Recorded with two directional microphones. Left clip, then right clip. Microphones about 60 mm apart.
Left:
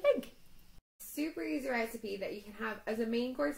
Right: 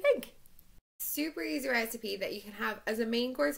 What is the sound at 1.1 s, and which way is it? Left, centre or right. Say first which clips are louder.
A woman's voice: right 2 dB; right.